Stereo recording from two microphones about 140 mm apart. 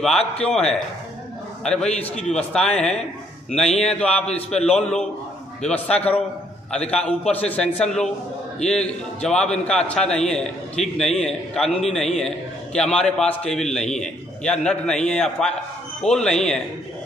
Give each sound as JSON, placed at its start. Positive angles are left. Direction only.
{"t": 0.2, "sound": "a man's voice", "side_deg": 45}
{"t": 1.6, "sound": "a man's voice", "side_deg": 5}